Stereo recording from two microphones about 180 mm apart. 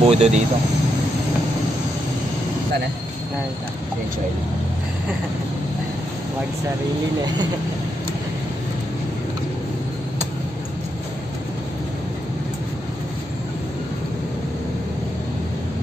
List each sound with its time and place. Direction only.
0.0 s speech: 35° right (ahead or behind)